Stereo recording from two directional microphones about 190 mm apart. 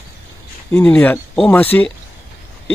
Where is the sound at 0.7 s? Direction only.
10° left (ahead or behind).